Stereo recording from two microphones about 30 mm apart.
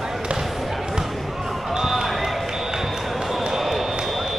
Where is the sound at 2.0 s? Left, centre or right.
Centre.